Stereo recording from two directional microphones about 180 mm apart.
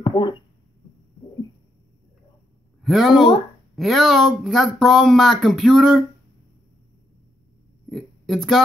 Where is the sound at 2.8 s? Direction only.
Centre (ahead or behind).